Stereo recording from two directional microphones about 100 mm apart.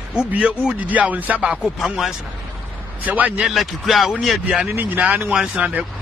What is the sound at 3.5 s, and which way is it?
Speech, centre (ahead or behind).